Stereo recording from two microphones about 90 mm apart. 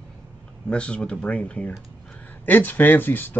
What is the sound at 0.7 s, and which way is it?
Speech, 10° left (ahead or behind).